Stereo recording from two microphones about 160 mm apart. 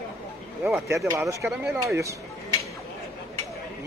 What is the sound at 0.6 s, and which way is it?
Speech, 15° right (ahead or behind).